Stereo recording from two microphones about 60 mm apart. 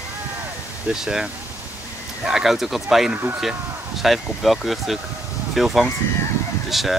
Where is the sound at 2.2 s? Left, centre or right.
Centre.